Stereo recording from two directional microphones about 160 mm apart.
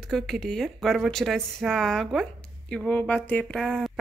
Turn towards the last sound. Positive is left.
turn(degrees=5)  # may be behind; listen again after turning